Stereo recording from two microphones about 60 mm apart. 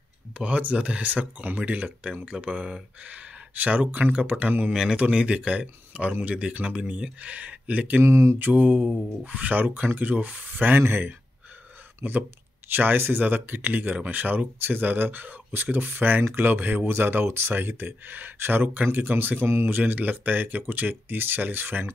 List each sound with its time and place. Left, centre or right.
0.4 s speech: right
8.0 s mantra: right
8.4 s speech: right